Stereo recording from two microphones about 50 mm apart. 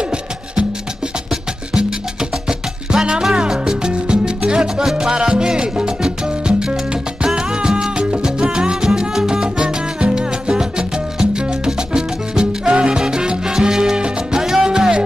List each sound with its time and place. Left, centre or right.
1.3 s music: centre
7.3 s salsa music: centre